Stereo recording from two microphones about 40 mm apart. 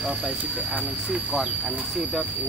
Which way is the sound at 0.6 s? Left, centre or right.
Right.